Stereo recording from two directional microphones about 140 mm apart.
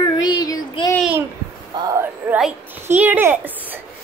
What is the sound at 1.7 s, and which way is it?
Speech, 25° right (ahead or behind).